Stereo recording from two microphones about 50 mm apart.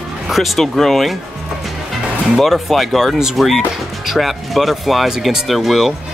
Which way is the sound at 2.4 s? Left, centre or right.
Centre.